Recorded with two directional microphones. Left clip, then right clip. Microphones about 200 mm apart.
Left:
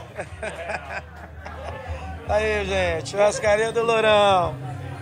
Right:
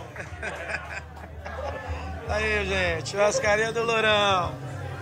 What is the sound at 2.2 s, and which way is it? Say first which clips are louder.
A man's voice: left 4 dB; 5° right (ahead or behind).